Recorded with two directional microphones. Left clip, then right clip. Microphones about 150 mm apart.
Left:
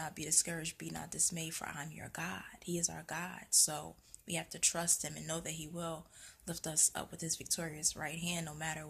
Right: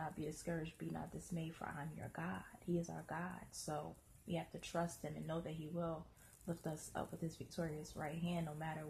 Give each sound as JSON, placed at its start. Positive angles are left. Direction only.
{"t": 0.0, "sound": "speech", "side_deg": 15}